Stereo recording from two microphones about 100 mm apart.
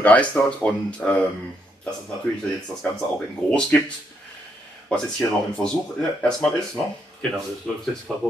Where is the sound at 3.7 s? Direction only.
15° left (ahead or behind).